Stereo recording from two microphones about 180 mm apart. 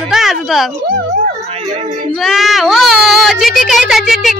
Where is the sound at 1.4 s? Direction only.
35° right (ahead or behind).